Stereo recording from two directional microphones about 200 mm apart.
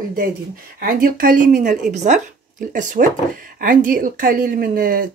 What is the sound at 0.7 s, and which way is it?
Speech, 45° right (ahead or behind).